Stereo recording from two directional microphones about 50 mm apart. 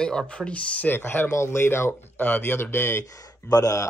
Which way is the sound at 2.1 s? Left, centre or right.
Left.